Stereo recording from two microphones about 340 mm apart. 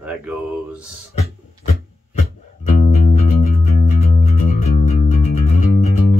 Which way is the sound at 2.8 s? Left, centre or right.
Centre.